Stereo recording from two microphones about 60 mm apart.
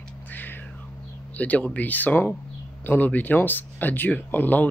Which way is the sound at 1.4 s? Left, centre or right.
Left.